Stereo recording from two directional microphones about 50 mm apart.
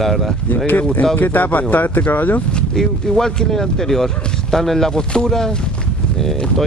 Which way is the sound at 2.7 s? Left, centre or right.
Centre.